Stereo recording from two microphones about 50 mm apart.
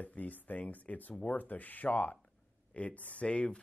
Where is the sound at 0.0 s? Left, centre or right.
Left.